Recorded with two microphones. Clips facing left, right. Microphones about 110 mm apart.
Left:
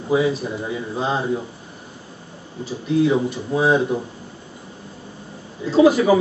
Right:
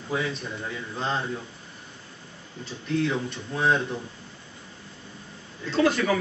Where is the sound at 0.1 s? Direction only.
10° left (ahead or behind).